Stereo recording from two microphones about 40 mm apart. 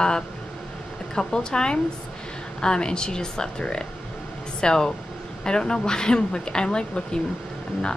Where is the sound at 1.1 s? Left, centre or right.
Left.